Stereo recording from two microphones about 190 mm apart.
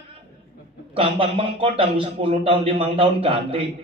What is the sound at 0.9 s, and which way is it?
A man's voice, 30° right (ahead or behind).